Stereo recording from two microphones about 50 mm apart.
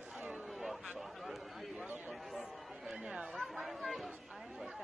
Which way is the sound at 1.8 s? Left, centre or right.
Right.